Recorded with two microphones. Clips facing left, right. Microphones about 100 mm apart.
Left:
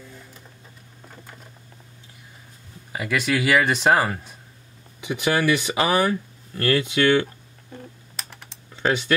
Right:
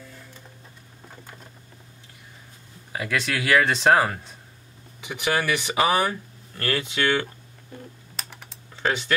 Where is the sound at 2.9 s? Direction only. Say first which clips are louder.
Left 3 dB; 10° left (ahead or behind).